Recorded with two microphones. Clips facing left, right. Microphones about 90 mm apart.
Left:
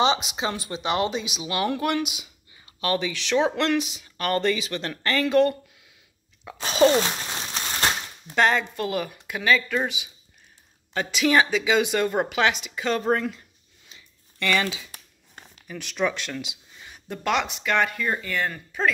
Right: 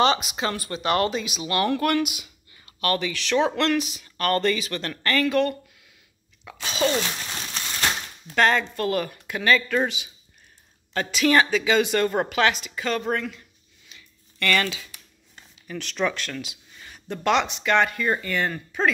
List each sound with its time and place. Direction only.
0.0 s speech: 20° left (ahead or behind)
6.6 s speech: 40° left (ahead or behind)
7.5 s crushing: 35° left (ahead or behind)
8.3 s speech: 15° left (ahead or behind)
10.9 s speech: 10° left (ahead or behind)
13.0 s speech: 30° left (ahead or behind)
13.8 s a sound: 20° left (ahead or behind)
14.5 s speech: 10° left (ahead or behind)
14.9 s a sound: 50° left (ahead or behind)
15.6 s speech: 10° left (ahead or behind)